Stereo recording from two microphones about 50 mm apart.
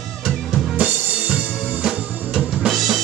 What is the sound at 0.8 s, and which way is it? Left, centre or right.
Music, right.